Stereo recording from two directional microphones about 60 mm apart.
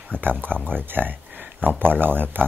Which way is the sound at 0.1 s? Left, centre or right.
Right.